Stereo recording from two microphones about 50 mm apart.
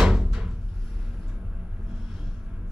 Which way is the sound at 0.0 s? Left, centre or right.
Centre.